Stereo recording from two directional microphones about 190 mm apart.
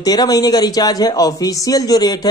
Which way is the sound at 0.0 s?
20° left (ahead or behind).